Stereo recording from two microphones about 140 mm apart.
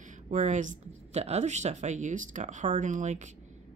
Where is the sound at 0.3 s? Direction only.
60° right (ahead or behind).